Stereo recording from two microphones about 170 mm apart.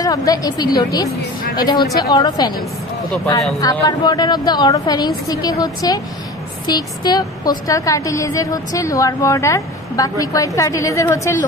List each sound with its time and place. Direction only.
0.0 s a woman's voice: 20° left (ahead or behind)
3.6 s a woman's voice: 20° left (ahead or behind)